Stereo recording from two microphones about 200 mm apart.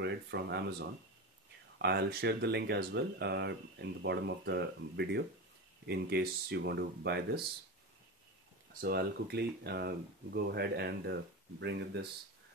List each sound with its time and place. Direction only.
0.0 s speech: 60° right (ahead or behind)
8.8 s speech: 50° right (ahead or behind)